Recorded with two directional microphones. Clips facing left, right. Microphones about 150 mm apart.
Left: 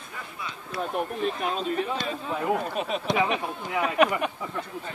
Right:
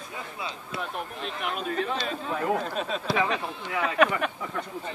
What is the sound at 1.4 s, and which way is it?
Speech, 25° left (ahead or behind).